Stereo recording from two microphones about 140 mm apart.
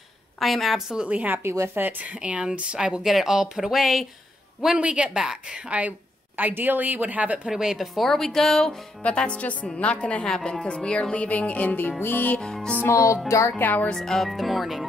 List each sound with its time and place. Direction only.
0.4 s speech: centre (ahead or behind)
12.0 s music: 15° left (ahead or behind)
12.9 s music: 20° left (ahead or behind)
13.3 s speech: 20° left (ahead or behind); by 14.9 s centre (ahead or behind)